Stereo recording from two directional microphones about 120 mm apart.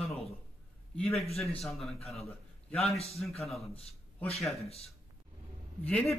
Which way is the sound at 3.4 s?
Centre (ahead or behind).